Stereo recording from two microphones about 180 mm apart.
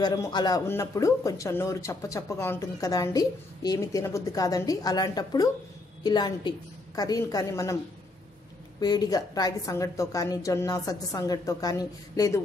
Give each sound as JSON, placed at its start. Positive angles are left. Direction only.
{"t": 0.0, "sound": "a man's voice", "side_deg": 20}
{"t": 8.7, "sound": "a woman's voice", "side_deg": 20}